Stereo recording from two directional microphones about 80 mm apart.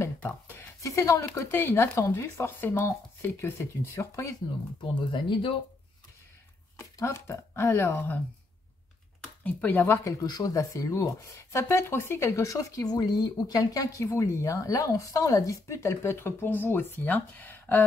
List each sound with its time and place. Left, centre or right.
0.2 s a sound: left
0.8 s speech: left
5.1 s speech: left
6.8 s speech: left
9.4 s speech: centre
10.2 s speech: left
14.1 s speech: left